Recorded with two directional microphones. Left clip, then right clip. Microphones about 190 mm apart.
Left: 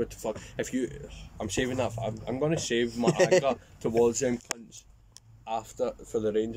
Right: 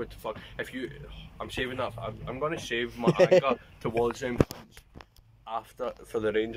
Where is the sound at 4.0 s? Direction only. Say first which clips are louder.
Left 4 dB; 25° left (ahead or behind).